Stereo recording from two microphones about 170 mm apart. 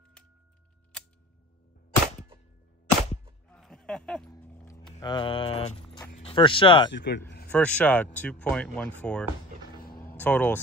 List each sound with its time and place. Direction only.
3.4 s a sound: 5° left (ahead or behind)
4.3 s dog: 10° left (ahead or behind)
5.0 s speech: 30° left (ahead or behind)
6.9 s a man's voice: 90° left
7.4 s speech: 5° left (ahead or behind)